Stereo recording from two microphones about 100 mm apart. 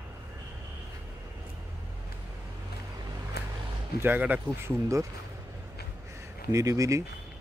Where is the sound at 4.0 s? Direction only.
20° right (ahead or behind).